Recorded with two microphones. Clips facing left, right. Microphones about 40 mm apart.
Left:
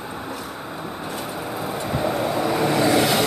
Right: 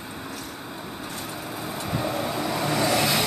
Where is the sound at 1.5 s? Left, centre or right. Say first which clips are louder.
Left 4 dB; centre.